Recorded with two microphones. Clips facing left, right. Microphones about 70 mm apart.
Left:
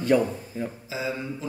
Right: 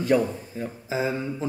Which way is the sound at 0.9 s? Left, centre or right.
Right.